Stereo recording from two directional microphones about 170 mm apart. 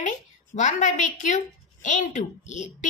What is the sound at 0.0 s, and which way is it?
Speech, 45° left (ahead or behind).